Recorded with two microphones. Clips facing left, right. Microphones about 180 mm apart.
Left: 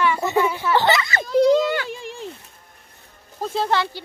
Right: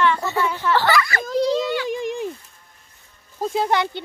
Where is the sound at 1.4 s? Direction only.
50° left (ahead or behind).